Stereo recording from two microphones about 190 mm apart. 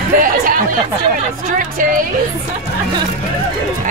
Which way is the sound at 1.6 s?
45° right (ahead or behind).